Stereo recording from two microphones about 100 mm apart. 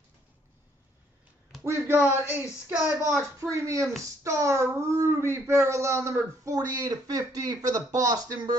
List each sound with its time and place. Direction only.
1.6 s speech: 25° right (ahead or behind)
3.3 s speech: 30° right (ahead or behind)